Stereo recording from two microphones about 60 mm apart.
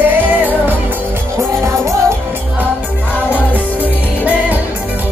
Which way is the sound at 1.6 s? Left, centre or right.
Right.